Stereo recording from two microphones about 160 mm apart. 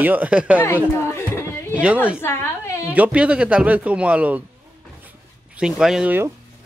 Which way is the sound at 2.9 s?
10° right (ahead or behind).